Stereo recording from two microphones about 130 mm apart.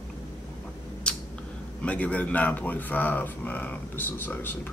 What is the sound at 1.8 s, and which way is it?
Speech, 10° left (ahead or behind).